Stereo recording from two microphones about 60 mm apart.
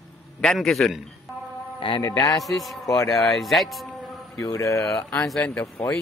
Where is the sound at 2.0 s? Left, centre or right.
Left.